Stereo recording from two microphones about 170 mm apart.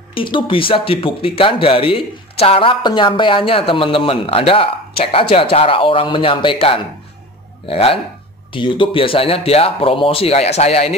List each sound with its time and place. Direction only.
0.1 s speech: 30° left (ahead or behind)